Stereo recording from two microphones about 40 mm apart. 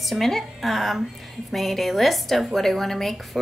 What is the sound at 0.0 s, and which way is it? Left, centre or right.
Speech, centre.